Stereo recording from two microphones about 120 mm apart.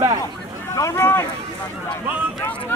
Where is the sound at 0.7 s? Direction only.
25° left (ahead or behind).